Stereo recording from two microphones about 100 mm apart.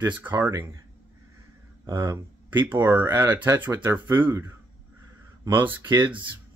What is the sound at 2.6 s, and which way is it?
Speech, 20° right (ahead or behind).